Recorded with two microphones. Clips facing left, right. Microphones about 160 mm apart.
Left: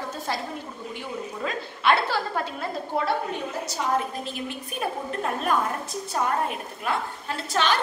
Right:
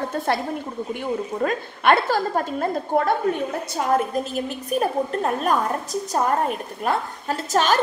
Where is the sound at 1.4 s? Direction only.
50° right (ahead or behind).